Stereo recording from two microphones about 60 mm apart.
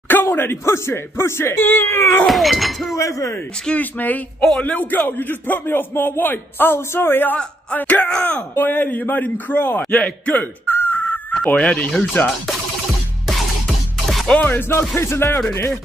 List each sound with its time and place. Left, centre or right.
0.1 s a man's voice: left
2.2 s breaking: centre
3.0 s speech: left
3.8 s a man's voice: left
7.7 s speech: left
8.5 s a man's voice: left
10.3 s chicken: left
11.4 s speech: left
13.3 s music: centre
14.3 s a man's voice: left
15.0 s speech: left